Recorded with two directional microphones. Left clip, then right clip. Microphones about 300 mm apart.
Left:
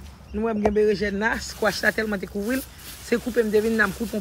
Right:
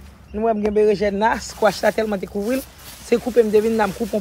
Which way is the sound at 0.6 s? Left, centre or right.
Centre.